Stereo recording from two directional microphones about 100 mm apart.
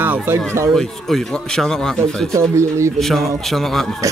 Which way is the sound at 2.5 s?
30° right (ahead or behind).